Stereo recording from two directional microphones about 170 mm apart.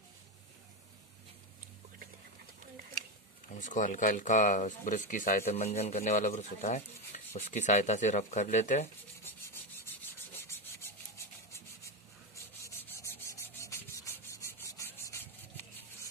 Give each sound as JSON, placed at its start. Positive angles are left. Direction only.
{"t": 3.5, "sound": "speech", "side_deg": 50}
{"t": 9.2, "sound": "rub", "side_deg": 15}
{"t": 12.6, "sound": "rub", "side_deg": 15}